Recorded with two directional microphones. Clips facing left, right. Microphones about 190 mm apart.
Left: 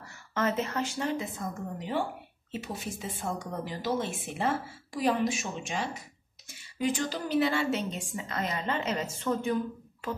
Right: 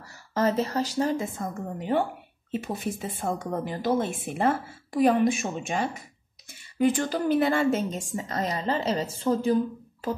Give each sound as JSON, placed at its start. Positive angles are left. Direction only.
{"t": 0.0, "sound": "a woman's voice", "side_deg": -35}